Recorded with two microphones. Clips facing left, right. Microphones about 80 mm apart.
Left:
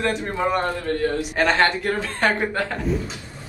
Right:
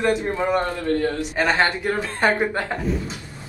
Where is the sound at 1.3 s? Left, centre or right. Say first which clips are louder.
Left 1 dB; centre.